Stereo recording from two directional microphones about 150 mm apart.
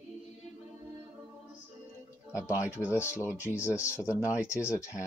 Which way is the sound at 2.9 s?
15° left (ahead or behind).